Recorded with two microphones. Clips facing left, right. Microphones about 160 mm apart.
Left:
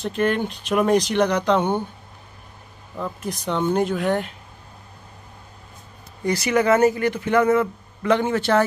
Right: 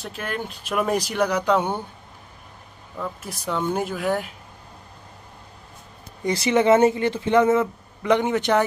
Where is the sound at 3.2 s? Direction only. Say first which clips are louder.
Left 4 dB; 5° right (ahead or behind).